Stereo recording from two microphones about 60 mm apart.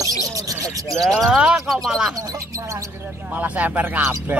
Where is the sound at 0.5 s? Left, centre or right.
Right.